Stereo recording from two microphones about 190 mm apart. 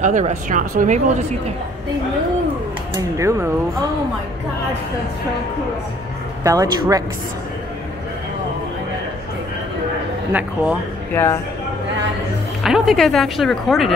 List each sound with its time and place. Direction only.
0.0 s speech: 40° right (ahead or behind)
2.9 s speech: 15° right (ahead or behind)
6.4 s speech: 15° right (ahead or behind)
10.3 s speech: 10° right (ahead or behind)
11.1 s speech: 15° left (ahead or behind)
12.6 s speech: centre (ahead or behind)